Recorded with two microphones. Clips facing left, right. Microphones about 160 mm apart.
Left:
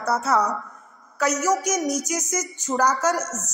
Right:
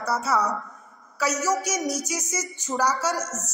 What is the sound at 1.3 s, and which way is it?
A woman's voice, 20° left (ahead or behind).